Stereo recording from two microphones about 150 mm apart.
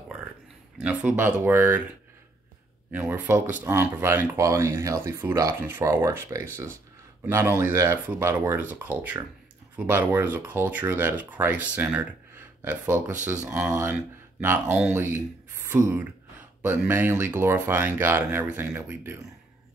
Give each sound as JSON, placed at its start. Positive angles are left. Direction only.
{"t": 0.7, "sound": "speech", "side_deg": -10}
{"t": 2.9, "sound": "speech", "side_deg": -15}
{"t": 14.7, "sound": "speech", "side_deg": -5}
{"t": 15.0, "sound": "speech", "side_deg": -15}